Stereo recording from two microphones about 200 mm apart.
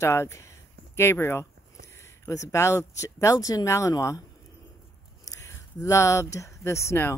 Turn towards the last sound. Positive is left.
turn(degrees=15)  # may be behind; listen again after turning